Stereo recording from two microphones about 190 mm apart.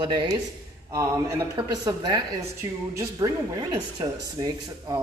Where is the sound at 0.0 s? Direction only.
25° right (ahead or behind).